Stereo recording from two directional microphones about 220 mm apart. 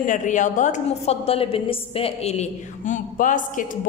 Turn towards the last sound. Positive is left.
turn(degrees=35)  # may be behind; listen again after turning